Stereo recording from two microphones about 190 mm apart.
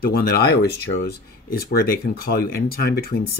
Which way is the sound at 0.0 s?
55° left (ahead or behind).